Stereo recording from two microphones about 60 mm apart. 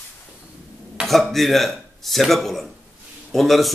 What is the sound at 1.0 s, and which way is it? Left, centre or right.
A man's voice, centre.